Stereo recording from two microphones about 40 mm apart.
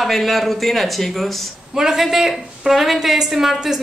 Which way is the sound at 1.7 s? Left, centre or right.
Centre.